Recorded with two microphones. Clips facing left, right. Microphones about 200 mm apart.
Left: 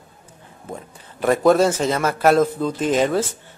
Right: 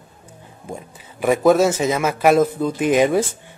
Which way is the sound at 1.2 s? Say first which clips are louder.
Right 1 dB; 5° right (ahead or behind).